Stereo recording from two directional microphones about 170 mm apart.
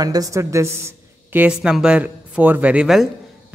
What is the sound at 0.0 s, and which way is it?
A woman's voice, 20° right (ahead or behind).